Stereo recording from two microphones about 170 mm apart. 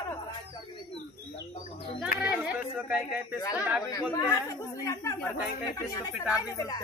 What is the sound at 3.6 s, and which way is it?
Speech, 10° right (ahead or behind).